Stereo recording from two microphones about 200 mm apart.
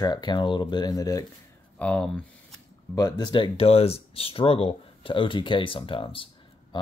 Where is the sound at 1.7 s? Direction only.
5° left (ahead or behind).